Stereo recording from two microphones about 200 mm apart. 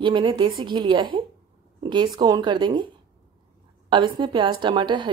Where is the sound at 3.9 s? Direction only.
25° right (ahead or behind).